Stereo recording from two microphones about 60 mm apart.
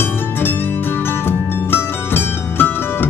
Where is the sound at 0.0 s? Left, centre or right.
Left.